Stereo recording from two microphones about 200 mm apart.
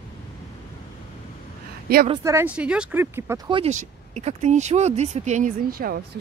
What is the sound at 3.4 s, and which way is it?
Speech, 30° right (ahead or behind).